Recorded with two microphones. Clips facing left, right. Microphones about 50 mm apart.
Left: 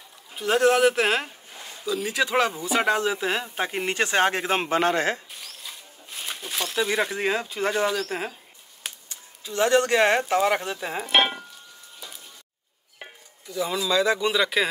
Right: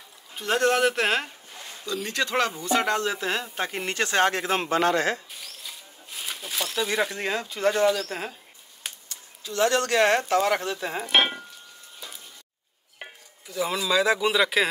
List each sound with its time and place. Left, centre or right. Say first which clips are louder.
0.4 s speech: left 3 dB; centre; by 5.2 s left
5.4 s a sound: left 1 dB; centre
9.1 s speech: even; left
11.0 s stir: left 1 dB; centre
13.5 s speech: even; centre